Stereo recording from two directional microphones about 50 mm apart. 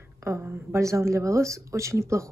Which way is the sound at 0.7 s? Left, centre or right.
Right.